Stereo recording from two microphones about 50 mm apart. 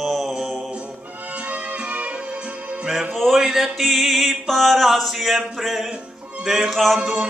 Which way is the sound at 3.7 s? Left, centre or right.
Centre.